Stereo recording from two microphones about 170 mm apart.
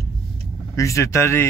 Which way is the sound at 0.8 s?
15° left (ahead or behind).